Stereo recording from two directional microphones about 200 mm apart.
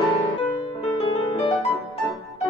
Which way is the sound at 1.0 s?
30° left (ahead or behind).